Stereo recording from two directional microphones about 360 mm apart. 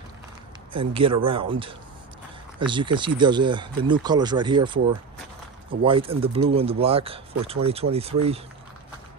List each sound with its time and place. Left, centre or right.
0.7 s speech: centre
5.9 s speech: centre